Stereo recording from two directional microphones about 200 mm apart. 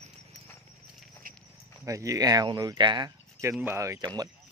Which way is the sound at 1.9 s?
15° right (ahead or behind).